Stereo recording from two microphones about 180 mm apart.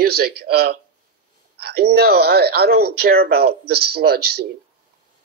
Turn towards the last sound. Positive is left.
turn(degrees=-60)  # may be behind; listen again after turning